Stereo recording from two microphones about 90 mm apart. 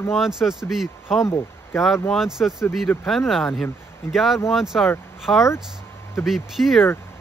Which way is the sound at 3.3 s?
5° left (ahead or behind).